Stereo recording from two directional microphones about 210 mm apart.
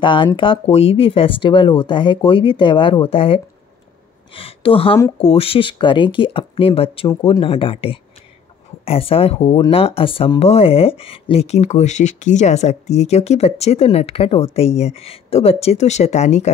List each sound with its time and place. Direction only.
0.0 s speech: 20° left (ahead or behind)
4.4 s speech: 25° left (ahead or behind)